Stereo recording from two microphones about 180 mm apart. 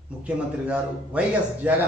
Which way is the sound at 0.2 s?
5° right (ahead or behind).